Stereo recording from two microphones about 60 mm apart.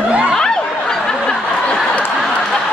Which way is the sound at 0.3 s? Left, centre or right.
Centre.